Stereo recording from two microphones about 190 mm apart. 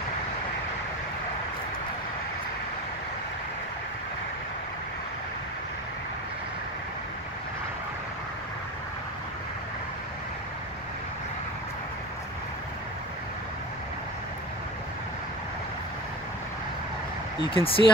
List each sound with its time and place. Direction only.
17.6 s speech: 30° left (ahead or behind)